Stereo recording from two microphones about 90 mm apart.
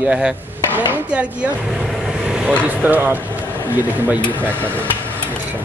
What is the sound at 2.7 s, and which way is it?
Speech, 20° right (ahead or behind).